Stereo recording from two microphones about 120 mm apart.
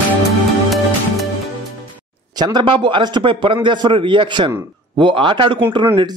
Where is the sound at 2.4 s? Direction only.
40° right (ahead or behind).